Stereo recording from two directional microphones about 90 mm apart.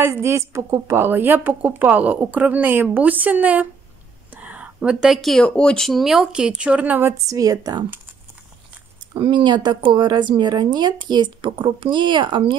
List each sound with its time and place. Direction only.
0.0 s a woman's voice: 30° right (ahead or behind)
7.2 s a woman's voice: 40° right (ahead or behind)
9.1 s speech: 65° right (ahead or behind)